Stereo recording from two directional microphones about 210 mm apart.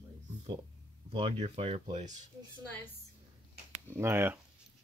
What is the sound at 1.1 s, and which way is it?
Speech, 25° right (ahead or behind).